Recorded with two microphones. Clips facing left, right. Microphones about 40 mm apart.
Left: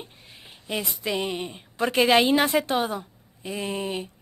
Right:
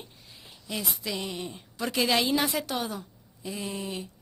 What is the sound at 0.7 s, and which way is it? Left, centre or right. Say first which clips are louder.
A woman's voice: left 5 dB; left.